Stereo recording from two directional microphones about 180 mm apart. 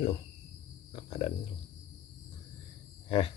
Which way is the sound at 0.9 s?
35° left (ahead or behind).